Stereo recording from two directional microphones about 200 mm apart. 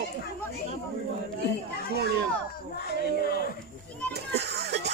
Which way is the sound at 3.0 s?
50° left (ahead or behind).